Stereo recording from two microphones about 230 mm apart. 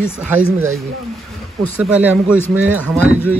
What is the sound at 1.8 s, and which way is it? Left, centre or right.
Speech, centre.